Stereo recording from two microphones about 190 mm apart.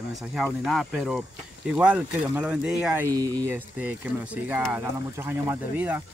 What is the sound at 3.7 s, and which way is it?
Speech, 5° right (ahead or behind).